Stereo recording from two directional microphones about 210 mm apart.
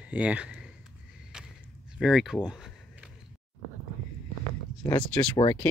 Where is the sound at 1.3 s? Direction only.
5° right (ahead or behind).